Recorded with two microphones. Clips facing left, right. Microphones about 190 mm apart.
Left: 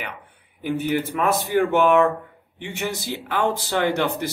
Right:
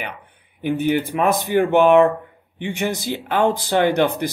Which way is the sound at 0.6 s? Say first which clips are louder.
Right 4 dB; 20° right (ahead or behind).